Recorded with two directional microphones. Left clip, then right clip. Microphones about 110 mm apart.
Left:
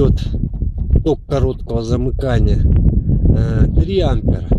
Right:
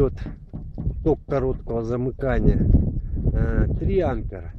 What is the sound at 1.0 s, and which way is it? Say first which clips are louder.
Speech: left 4 dB; 25° left (ahead or behind).